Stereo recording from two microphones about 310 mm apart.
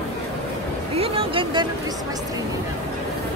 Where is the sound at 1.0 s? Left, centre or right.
Centre.